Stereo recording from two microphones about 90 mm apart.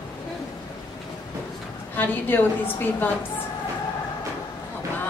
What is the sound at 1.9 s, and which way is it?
Speech, 20° left (ahead or behind).